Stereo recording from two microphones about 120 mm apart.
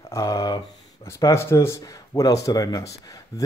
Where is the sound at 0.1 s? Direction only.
25° left (ahead or behind).